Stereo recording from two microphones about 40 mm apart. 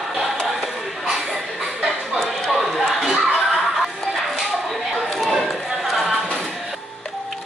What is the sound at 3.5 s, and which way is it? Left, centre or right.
Music, centre.